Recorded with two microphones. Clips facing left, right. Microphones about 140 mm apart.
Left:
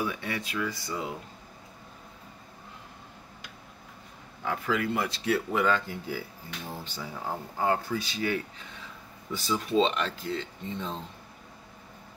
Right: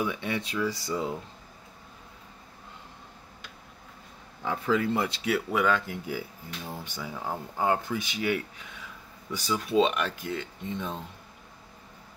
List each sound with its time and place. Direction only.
0.0 s speech: 20° right (ahead or behind)
0.7 s speech: 35° right (ahead or behind)
4.5 s speech: 25° right (ahead or behind)
5.2 s speech: 5° right (ahead or behind)
9.5 s speech: 10° right (ahead or behind)